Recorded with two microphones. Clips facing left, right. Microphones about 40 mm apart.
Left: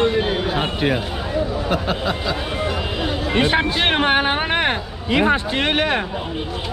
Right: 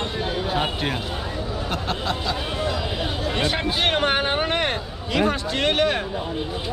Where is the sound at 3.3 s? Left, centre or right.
Left.